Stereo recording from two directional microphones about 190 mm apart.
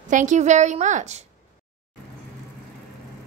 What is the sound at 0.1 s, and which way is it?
A woman's voice, 40° right (ahead or behind).